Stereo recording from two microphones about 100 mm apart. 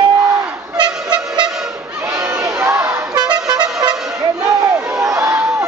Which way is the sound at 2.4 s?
30° right (ahead or behind).